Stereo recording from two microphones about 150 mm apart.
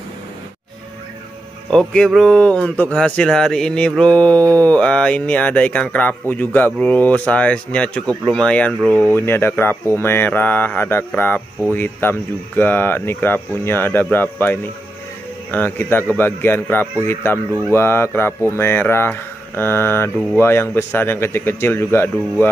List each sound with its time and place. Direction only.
1.7 s speech: 5° left (ahead or behind)